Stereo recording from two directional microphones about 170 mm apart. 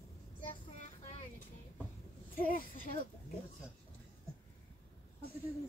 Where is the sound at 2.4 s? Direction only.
55° left (ahead or behind).